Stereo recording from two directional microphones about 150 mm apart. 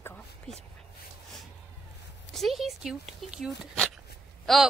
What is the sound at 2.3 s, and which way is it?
Speech, centre (ahead or behind).